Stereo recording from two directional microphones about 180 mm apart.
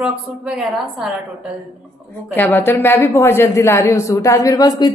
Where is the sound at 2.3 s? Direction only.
10° left (ahead or behind).